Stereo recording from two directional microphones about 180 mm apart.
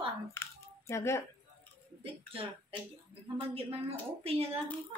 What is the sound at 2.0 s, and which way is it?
Speech, 30° right (ahead or behind).